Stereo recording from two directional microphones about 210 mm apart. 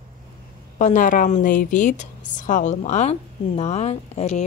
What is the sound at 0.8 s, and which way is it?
A woman's voice, 40° left (ahead or behind).